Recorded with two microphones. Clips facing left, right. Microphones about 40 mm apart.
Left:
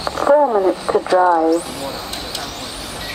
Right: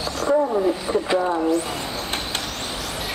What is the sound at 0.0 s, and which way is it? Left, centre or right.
Roaring cats, left.